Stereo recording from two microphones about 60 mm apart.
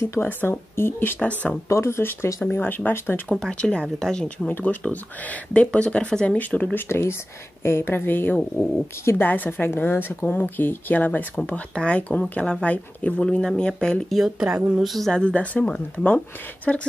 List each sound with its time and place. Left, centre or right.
0.2 s speech: left
1.7 s speech: left
2.5 s speech: left
3.3 s speech: centre
4.5 s speech: left
8.4 s speech: centre
9.2 s speech: left
11.7 s speech: centre
13.2 s speech: centre
14.0 s speech: centre
14.4 s a woman's voice: centre
14.9 s speech: centre
15.1 s speech: left